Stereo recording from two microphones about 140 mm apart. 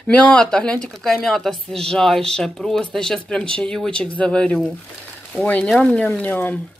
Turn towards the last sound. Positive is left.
turn(degrees=10)  # may be behind; listen again after turning